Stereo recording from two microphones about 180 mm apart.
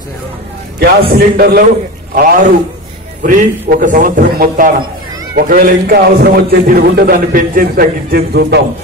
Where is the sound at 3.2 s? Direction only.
45° right (ahead or behind); by 8.6 s 65° right (ahead or behind).